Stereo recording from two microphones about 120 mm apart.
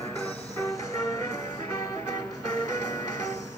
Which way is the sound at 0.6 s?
25° left (ahead or behind).